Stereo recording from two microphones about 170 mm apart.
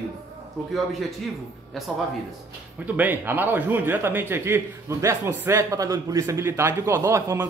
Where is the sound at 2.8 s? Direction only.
10° right (ahead or behind).